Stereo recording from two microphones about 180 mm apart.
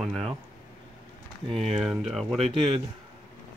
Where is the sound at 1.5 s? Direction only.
Centre (ahead or behind).